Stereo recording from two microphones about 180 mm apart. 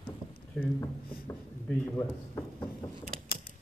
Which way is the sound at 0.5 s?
10° left (ahead or behind).